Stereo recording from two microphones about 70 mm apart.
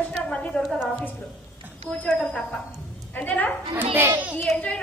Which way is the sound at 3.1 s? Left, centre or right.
Left.